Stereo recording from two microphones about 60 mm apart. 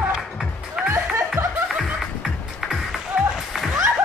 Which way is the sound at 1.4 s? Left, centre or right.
Right.